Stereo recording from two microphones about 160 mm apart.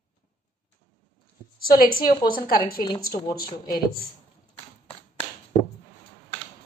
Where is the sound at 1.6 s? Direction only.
65° left (ahead or behind).